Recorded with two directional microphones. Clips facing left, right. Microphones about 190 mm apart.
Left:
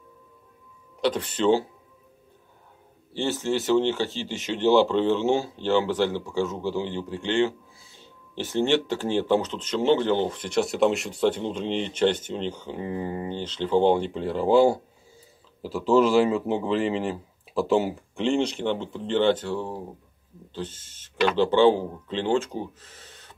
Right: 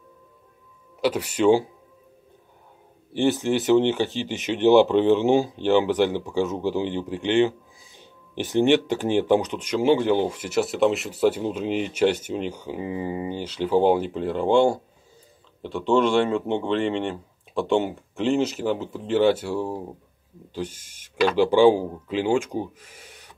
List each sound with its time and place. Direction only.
1.0 s speech: 10° right (ahead or behind)
3.1 s speech: 15° right (ahead or behind)